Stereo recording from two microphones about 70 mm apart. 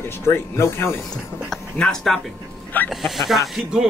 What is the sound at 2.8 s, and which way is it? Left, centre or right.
Speech, left.